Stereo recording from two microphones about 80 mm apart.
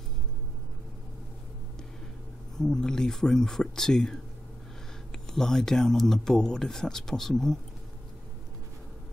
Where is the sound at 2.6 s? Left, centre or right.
Centre.